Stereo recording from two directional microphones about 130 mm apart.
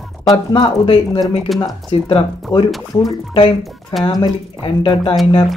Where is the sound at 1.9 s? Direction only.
45° left (ahead or behind).